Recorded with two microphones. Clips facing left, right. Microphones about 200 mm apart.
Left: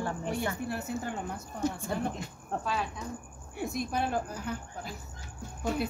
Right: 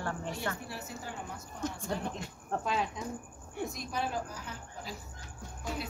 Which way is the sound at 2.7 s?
20° right (ahead or behind).